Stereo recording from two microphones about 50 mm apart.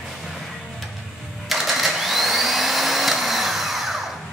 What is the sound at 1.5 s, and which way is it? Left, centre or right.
Vacuum cleaner, centre.